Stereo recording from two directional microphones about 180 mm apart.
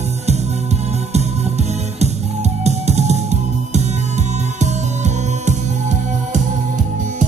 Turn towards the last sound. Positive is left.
turn(degrees=-40)  # may be behind; listen again after turning